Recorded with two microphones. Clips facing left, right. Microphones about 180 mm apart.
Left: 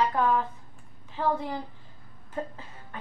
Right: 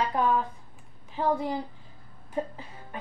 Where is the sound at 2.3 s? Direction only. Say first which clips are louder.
Right 3 dB; 15° right (ahead or behind).